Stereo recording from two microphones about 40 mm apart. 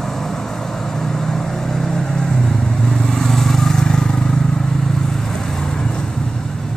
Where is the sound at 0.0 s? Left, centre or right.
Centre.